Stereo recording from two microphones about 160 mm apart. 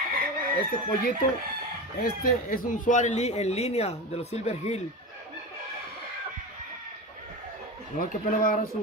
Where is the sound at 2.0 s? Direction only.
60° left (ahead or behind); by 4.8 s 45° left (ahead or behind).